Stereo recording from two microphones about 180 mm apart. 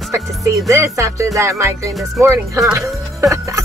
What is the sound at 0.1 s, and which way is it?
Speech, 15° right (ahead or behind).